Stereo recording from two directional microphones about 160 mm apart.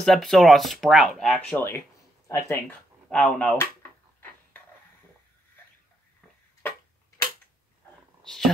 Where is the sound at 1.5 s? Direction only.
15° left (ahead or behind).